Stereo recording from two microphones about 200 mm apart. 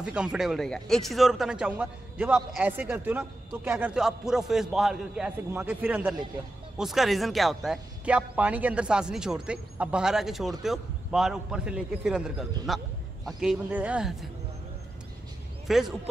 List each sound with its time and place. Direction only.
0.0 s speech: 5° right (ahead or behind)
12.6 s a sound: centre (ahead or behind)
13.4 s speech: 5° right (ahead or behind)
15.6 s speech: centre (ahead or behind)